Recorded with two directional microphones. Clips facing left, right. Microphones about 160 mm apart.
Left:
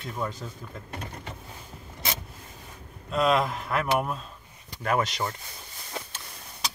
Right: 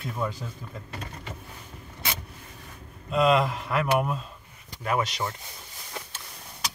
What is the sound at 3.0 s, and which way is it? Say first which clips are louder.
Speech: right 2 dB; centre (ahead or behind).